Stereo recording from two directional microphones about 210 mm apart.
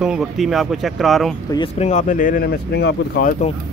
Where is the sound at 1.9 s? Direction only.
40° left (ahead or behind).